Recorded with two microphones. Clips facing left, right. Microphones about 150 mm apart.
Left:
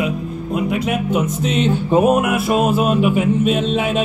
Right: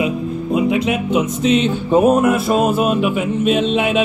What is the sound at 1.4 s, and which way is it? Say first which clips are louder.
Music: right 6 dB; 60° left (ahead or behind).